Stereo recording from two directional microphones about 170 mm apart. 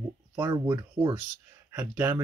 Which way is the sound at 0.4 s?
15° right (ahead or behind).